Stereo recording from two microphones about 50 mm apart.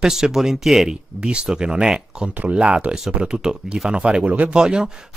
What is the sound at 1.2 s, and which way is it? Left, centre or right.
Speech, centre.